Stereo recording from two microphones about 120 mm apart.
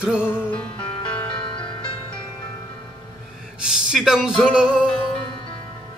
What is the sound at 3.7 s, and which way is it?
Music, 5° right (ahead or behind).